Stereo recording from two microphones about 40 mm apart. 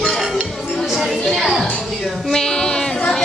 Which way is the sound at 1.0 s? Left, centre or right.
Centre.